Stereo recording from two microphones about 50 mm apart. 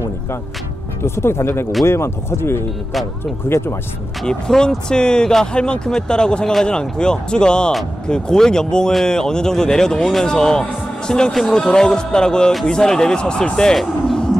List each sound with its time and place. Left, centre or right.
1.0 s speech: left
4.3 s speech: centre